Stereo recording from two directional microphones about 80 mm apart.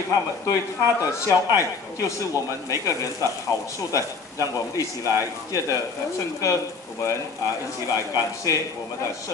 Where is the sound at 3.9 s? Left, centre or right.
Left.